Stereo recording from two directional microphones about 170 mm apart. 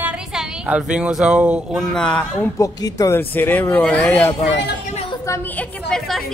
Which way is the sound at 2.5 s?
20° left (ahead or behind).